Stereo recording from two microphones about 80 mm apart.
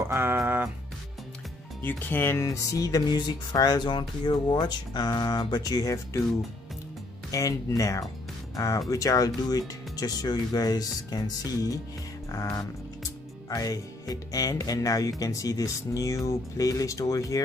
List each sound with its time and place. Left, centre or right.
0.0 s music: right
1.8 s speech: left
3.1 s speech: left
7.2 s speech: left
13.5 s speech: left